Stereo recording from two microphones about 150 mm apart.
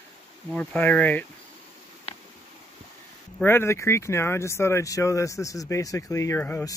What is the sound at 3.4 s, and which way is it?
Speech, 15° left (ahead or behind).